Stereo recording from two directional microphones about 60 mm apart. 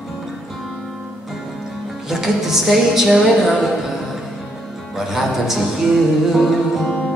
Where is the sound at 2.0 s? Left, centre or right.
Centre.